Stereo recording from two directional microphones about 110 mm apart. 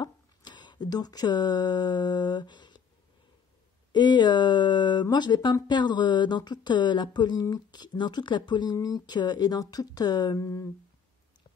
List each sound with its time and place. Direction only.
0.0 s speech: 40° left (ahead or behind)
3.9 s speech: 40° left (ahead or behind)
10.4 s humming: 25° left (ahead or behind)